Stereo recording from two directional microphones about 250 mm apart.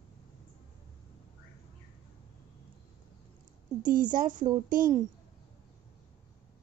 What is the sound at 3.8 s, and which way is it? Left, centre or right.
Speech, right.